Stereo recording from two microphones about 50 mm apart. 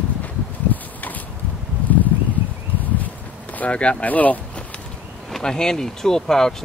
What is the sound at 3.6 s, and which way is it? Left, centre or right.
Speech, left.